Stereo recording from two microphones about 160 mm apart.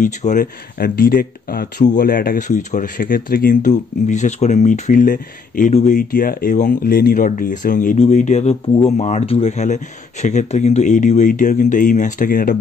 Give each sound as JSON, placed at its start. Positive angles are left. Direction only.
{"t": 0.0, "sound": "speech", "side_deg": 55}
{"t": 0.7, "sound": "speech", "side_deg": 70}